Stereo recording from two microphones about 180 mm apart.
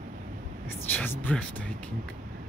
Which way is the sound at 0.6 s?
10° left (ahead or behind).